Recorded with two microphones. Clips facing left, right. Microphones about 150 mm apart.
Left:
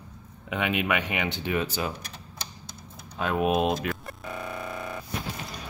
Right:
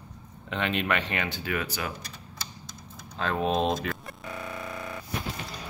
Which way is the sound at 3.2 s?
10° left (ahead or behind).